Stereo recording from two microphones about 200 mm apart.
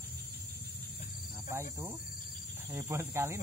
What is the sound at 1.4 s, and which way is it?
Speech, 15° right (ahead or behind).